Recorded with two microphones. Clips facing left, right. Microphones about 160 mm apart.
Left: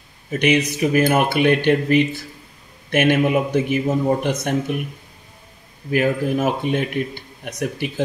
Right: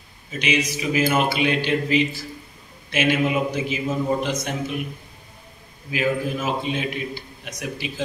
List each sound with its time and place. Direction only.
0.3 s a man's voice: 60° left (ahead or behind)
5.9 s a man's voice: 60° left (ahead or behind)